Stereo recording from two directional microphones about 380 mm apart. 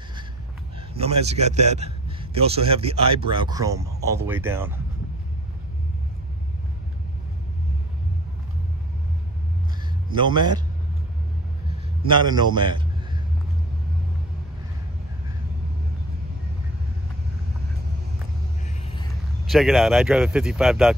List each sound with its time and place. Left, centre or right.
0.9 s speech: centre
10.0 s a man's voice: centre
12.1 s a man's voice: centre
19.5 s speech: centre